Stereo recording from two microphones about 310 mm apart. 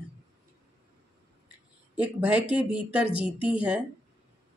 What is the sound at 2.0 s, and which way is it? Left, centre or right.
A woman's voice, centre.